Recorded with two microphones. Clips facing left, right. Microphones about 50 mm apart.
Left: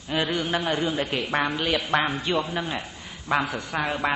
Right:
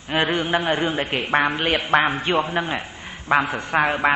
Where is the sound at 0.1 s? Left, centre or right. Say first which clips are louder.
Right 4 dB; right.